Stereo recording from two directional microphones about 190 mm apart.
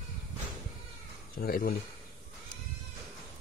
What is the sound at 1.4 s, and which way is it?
Speech, 55° left (ahead or behind).